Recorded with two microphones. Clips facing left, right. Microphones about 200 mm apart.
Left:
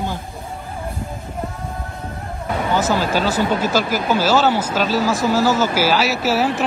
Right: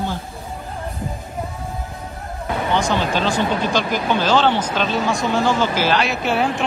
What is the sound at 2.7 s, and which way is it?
Speech, 5° left (ahead or behind).